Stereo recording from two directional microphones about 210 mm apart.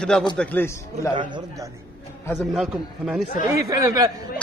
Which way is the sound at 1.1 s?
20° right (ahead or behind).